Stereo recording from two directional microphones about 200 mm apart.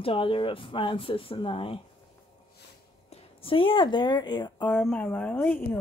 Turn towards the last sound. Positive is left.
turn(degrees=5)  # may be behind; listen again after turning